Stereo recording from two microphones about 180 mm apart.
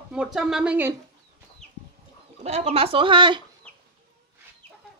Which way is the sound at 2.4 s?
35° right (ahead or behind).